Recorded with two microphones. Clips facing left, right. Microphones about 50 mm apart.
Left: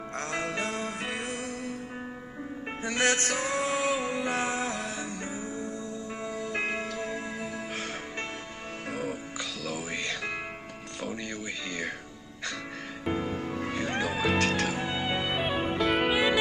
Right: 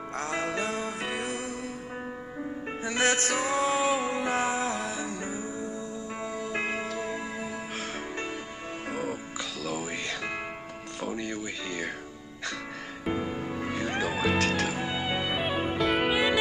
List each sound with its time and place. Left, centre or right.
0.2 s music: centre
2.9 s music: centre
9.8 s music: centre
11.2 s music: centre
13.0 s music: centre